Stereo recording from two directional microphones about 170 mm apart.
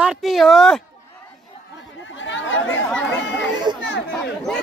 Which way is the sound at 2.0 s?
90° left.